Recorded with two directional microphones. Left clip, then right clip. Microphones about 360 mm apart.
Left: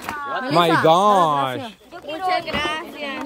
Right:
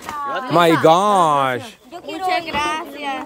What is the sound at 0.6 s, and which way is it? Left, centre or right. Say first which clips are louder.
Speech: right 2 dB; centre.